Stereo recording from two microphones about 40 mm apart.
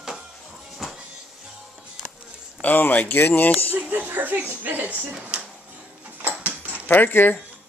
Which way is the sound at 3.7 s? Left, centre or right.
Right.